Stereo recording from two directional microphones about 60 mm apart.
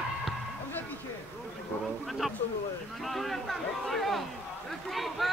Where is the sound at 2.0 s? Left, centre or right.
Centre.